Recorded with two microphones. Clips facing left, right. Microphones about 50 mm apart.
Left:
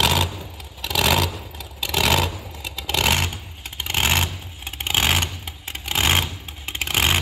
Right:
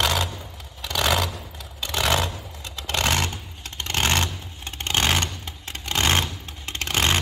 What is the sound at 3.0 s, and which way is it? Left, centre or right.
Vehicle, centre.